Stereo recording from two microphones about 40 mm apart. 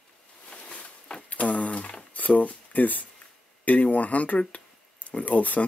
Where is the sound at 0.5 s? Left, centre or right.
Left.